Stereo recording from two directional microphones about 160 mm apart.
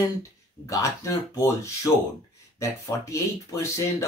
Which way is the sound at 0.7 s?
20° left (ahead or behind).